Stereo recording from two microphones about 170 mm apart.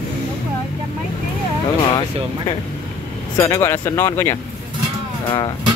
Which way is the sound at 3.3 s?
15° left (ahead or behind).